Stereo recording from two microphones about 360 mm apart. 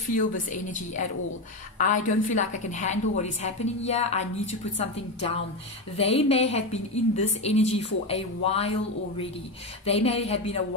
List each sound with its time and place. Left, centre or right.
0.1 s a woman's voice: left
2.0 s a woman's voice: left
9.8 s a woman's voice: centre